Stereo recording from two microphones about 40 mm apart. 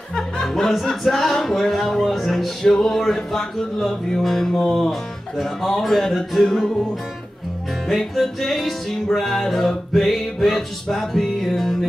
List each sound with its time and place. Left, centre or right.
0.1 s speech: centre
8.2 s speech: centre